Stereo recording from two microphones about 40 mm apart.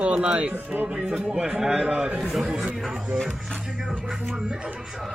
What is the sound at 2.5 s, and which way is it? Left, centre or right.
Speech, right.